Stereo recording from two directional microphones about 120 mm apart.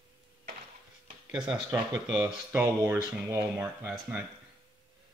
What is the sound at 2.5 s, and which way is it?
Speech, 20° right (ahead or behind).